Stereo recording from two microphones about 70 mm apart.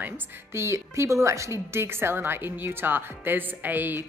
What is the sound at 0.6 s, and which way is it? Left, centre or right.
A woman's voice, right.